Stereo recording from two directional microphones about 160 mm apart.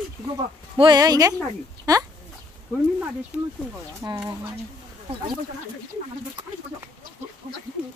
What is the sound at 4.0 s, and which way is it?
Speech, 20° right (ahead or behind).